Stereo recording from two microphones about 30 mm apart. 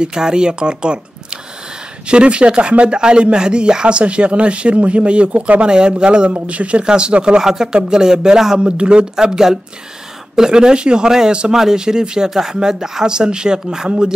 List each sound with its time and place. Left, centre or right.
0.0 s speech: right
2.0 s speech: right
6.4 s speech: right
6.8 s speech: right
7.3 s speech: right
8.5 s speech: right
9.1 s speech: right
11.8 s speech: right